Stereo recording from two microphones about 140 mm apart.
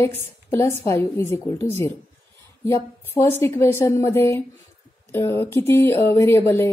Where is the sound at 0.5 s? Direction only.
20° left (ahead or behind).